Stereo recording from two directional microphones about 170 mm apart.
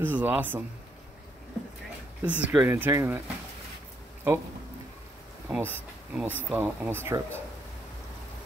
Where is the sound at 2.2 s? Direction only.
10° right (ahead or behind).